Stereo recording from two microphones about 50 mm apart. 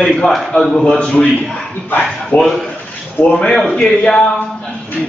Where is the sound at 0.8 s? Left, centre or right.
Centre.